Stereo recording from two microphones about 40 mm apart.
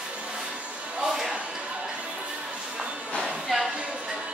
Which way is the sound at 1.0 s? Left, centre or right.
Centre.